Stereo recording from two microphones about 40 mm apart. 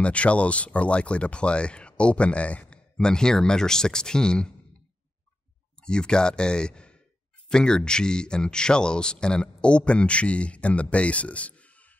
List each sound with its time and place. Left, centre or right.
0.0 s speech: left
3.0 s speech: centre
5.8 s speech: left